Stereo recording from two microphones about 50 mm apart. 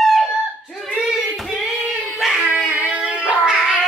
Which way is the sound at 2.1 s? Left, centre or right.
Centre.